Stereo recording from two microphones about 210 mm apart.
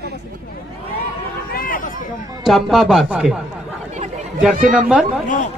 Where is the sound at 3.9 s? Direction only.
35° right (ahead or behind).